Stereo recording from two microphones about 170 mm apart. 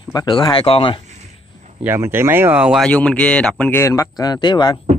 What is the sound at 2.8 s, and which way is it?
Speech, 10° left (ahead or behind).